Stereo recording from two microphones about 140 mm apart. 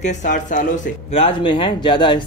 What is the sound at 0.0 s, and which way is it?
Speech, 60° left (ahead or behind).